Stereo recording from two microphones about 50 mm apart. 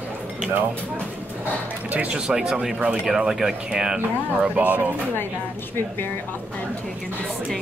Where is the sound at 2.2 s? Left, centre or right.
Centre.